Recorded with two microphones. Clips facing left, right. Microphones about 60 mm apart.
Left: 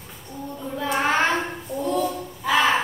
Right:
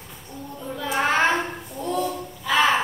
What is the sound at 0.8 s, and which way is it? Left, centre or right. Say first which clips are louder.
Child singing: right 1 dB; centre.